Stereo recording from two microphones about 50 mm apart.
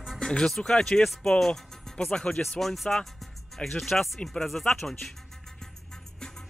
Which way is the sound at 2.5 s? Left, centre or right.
Centre.